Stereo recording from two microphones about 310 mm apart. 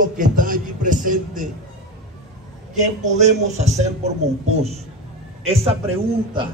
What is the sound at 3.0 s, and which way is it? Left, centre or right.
Speech, right.